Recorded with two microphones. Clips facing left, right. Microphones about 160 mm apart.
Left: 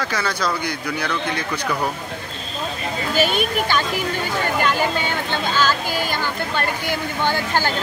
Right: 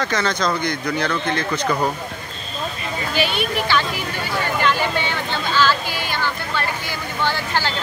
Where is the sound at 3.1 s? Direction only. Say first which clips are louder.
Left 2 dB; 45° left (ahead or behind).